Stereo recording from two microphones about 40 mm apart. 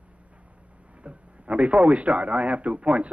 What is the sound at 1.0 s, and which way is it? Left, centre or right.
A man's voice, right.